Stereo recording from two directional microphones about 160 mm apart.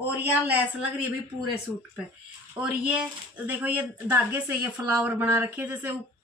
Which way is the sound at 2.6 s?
5° right (ahead or behind).